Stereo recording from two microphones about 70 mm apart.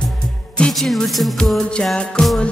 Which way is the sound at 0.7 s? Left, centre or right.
Centre.